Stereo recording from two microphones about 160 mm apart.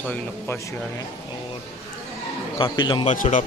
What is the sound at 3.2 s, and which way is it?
Speech, 55° left (ahead or behind).